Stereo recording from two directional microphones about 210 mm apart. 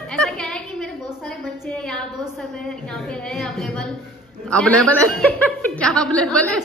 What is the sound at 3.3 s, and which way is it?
A man's voice, 5° left (ahead or behind).